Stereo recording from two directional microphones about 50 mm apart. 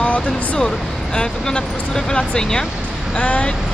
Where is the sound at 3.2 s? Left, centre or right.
Left.